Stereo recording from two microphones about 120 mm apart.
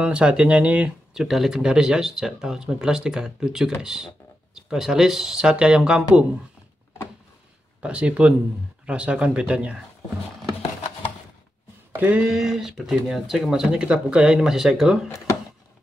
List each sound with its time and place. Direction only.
0.0 s speech: 10° right (ahead or behind)
7.8 s speech: 10° right (ahead or behind)
11.9 s speech: 10° right (ahead or behind)
15.0 s speech: 25° left (ahead or behind)